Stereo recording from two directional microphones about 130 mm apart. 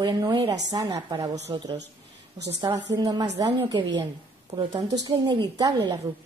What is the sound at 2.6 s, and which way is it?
A woman's voice, 30° right (ahead or behind).